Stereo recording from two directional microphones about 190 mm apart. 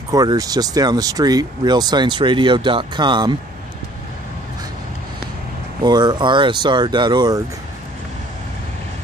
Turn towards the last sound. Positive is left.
turn(degrees=-20)  # may be behind; listen again after turning